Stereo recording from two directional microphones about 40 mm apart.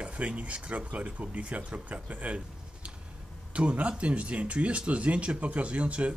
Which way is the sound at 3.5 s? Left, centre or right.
Right.